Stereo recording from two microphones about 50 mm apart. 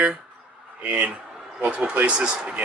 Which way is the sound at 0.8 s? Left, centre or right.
Right.